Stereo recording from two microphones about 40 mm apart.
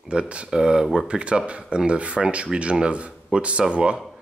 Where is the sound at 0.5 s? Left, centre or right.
Centre.